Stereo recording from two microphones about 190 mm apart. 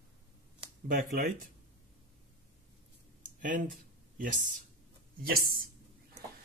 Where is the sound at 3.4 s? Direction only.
45° right (ahead or behind).